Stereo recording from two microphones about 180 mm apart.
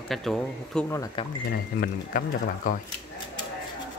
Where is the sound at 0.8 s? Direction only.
15° left (ahead or behind).